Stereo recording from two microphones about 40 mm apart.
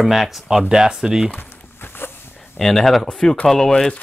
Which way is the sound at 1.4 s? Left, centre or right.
Left.